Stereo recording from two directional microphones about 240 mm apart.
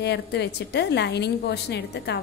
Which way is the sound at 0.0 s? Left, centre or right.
Left.